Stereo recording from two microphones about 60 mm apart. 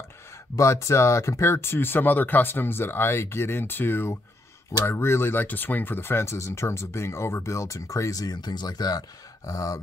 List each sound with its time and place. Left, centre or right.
0.6 s speech: left